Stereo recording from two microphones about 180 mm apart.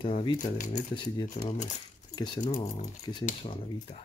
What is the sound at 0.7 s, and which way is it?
Speech, 25° left (ahead or behind).